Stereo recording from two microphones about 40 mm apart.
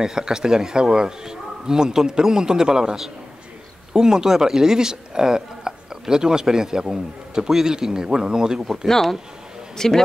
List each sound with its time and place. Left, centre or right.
0.0 s speech: centre
8.8 s speech: centre